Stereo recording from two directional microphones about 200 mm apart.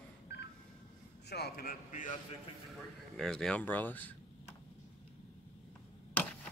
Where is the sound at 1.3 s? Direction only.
50° left (ahead or behind).